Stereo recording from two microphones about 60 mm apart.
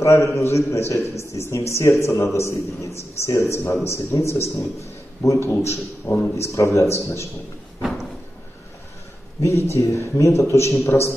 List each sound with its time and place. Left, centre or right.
0.0 s a man's voice: left
7.8 s a sound: centre
9.4 s a man's voice: left